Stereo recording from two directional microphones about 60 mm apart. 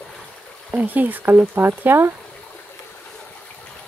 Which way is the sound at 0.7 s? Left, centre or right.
Right.